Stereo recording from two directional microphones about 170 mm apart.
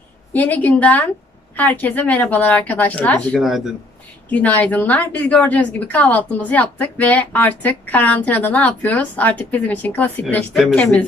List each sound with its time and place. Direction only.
0.3 s a woman's voice: 10° left (ahead or behind)
3.3 s speech: centre (ahead or behind)
4.3 s a woman's voice: 10° left (ahead or behind)